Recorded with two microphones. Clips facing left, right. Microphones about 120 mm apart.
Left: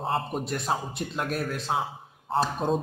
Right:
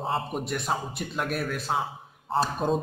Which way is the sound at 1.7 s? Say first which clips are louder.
Even; 10° left (ahead or behind).